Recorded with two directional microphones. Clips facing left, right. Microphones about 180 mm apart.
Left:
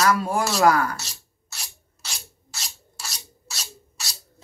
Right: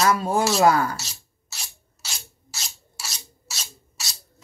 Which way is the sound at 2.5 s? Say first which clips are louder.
Even; 5° right (ahead or behind).